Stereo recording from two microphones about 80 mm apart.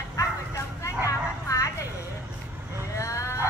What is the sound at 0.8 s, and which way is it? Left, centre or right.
Vehicle, left.